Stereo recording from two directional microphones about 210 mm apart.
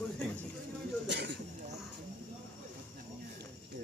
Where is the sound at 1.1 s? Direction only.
55° right (ahead or behind).